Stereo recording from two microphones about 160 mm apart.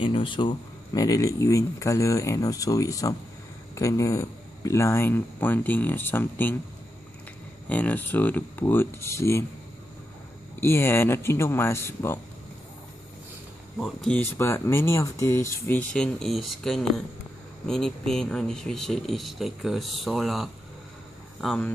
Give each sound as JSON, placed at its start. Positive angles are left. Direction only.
{"t": 0.0, "sound": "speech", "side_deg": 30}
{"t": 7.6, "sound": "speech", "side_deg": 10}
{"t": 10.6, "sound": "speech", "side_deg": 15}
{"t": 13.7, "sound": "speech", "side_deg": 0}
{"t": 14.3, "sound": "speech", "side_deg": 15}